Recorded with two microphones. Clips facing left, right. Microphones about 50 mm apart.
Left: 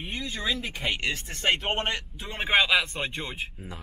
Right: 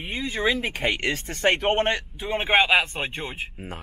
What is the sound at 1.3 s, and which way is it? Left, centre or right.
Speech, right.